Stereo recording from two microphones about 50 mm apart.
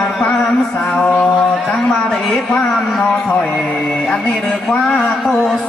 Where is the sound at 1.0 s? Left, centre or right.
Left.